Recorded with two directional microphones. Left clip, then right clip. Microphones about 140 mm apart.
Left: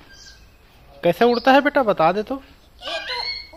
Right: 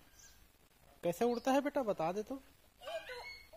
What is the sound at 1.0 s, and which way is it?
Speech, 30° right (ahead or behind).